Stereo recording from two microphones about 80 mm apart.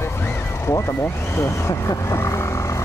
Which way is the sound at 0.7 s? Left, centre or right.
Left.